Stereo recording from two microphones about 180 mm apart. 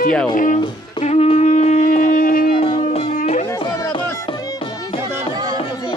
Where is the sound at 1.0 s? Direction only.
35° left (ahead or behind).